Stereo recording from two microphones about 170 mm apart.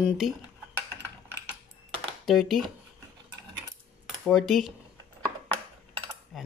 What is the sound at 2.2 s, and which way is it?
Speech, centre (ahead or behind).